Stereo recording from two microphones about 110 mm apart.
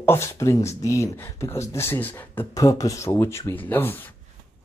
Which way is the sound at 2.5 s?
35° left (ahead or behind).